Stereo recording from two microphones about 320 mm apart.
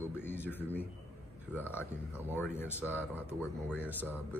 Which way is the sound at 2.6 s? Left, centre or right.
Centre.